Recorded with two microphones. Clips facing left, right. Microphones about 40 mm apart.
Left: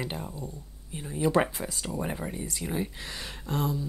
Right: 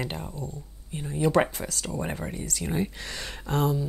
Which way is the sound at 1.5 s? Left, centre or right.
Centre.